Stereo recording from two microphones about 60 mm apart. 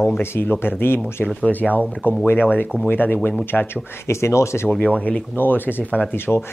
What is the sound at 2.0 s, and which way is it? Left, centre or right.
Speech, left.